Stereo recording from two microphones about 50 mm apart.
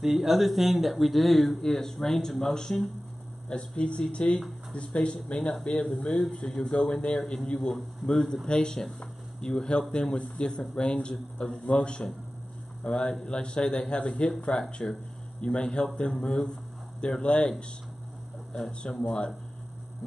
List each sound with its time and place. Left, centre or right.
0.0 s speech: centre
3.4 s speech: left
7.5 s speech: centre